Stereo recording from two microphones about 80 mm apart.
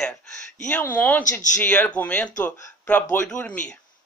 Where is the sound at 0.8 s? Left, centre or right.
Left.